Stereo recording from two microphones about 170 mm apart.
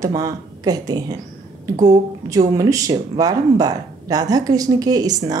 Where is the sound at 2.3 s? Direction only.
20° right (ahead or behind).